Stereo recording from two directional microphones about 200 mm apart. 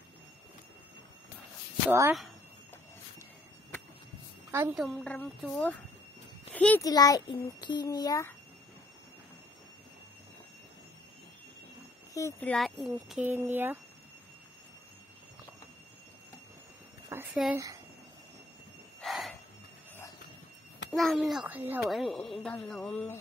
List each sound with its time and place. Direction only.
1.9 s speech: 10° right (ahead or behind)
4.5 s a woman's voice: 15° right (ahead or behind)
4.7 s a child's voice: centre (ahead or behind)
6.8 s a child's voice: 20° left (ahead or behind)
12.1 s speech: 15° left (ahead or behind); by 13.7 s 10° right (ahead or behind)
17.1 s speech: 10° right (ahead or behind)
18.9 s a sound: centre (ahead or behind)
20.9 s speech: centre (ahead or behind)